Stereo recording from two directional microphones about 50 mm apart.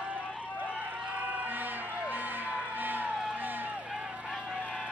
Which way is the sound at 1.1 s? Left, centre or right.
Right.